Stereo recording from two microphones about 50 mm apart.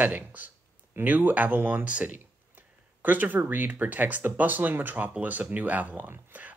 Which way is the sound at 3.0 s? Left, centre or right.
Right.